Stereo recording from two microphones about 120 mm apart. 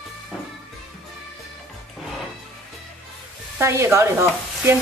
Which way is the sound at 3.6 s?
20° right (ahead or behind).